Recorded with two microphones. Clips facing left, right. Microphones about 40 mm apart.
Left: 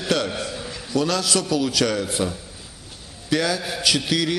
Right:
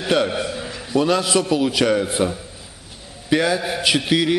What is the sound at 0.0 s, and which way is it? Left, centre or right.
A man's voice, right.